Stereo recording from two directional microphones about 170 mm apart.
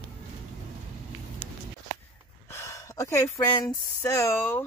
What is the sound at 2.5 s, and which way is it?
Speech, 20° left (ahead or behind).